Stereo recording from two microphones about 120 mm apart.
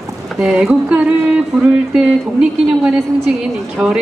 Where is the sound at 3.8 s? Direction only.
10° right (ahead or behind).